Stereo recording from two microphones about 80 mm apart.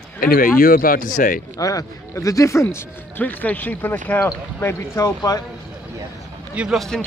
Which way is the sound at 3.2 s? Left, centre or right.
Left.